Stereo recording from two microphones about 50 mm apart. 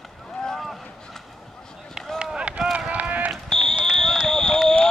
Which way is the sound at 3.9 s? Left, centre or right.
Centre.